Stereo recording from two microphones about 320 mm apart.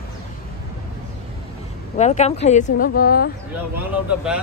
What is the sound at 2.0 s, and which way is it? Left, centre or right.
A woman's voice, left.